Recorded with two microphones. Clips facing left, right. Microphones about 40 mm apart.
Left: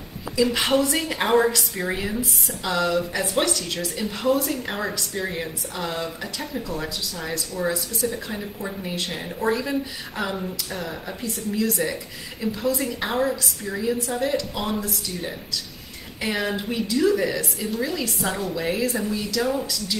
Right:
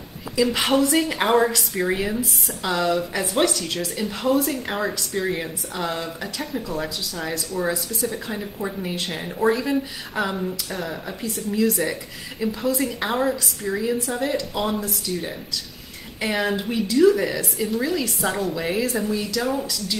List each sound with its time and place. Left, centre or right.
0.4 s speech: centre
8.0 s a woman's voice: centre
8.6 s a woman's voice: centre
16.2 s speech: centre